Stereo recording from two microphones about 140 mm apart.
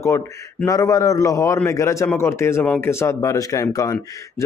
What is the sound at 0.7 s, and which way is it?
Speech, 20° left (ahead or behind).